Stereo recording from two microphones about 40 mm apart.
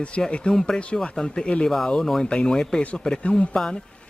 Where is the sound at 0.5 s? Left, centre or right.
Centre.